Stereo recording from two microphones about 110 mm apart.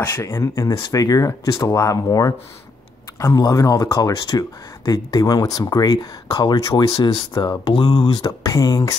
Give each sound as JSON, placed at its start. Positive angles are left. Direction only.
{"t": 0.0, "sound": "speech", "side_deg": 25}
{"t": 7.7, "sound": "speech", "side_deg": 60}
{"t": 8.2, "sound": "speech", "side_deg": 35}